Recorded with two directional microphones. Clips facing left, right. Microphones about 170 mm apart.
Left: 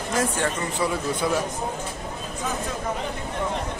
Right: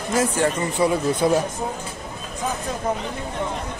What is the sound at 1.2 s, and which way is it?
Speech, 30° right (ahead or behind).